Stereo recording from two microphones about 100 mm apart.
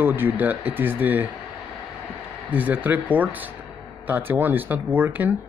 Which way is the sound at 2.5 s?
15° right (ahead or behind).